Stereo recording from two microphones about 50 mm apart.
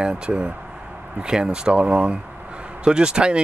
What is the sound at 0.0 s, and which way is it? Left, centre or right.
Speech, centre.